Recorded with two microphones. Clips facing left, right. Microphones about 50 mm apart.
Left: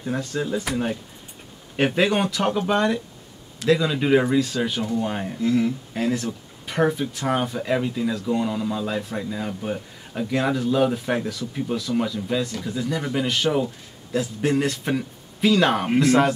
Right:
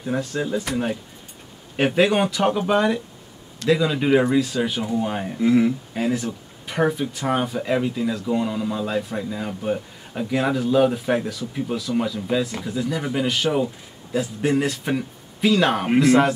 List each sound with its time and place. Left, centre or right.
0.0 s speech: centre
5.4 s speech: centre
5.9 s speech: centre